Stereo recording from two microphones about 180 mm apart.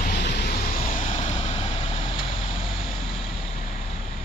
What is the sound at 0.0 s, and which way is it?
Vehicle, 50° left (ahead or behind).